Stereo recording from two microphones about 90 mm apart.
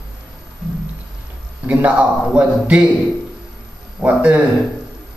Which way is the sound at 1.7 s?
15° right (ahead or behind).